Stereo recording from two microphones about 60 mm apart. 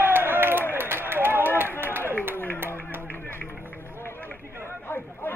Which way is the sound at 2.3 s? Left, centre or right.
Left.